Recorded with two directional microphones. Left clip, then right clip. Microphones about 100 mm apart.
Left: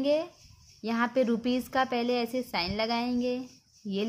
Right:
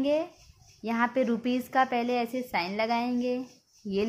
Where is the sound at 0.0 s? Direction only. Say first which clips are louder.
Even; 35° left (ahead or behind).